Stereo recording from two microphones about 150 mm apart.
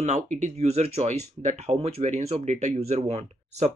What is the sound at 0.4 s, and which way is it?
Speech, 45° right (ahead or behind).